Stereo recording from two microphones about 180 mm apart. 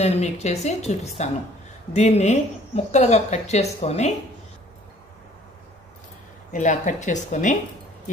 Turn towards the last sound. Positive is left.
turn(degrees=40)  # may be behind; listen again after turning